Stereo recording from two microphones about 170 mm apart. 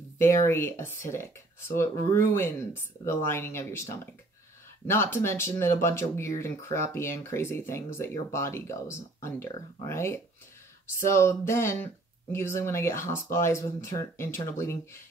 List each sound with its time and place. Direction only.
0.2 s speech: 15° left (ahead or behind)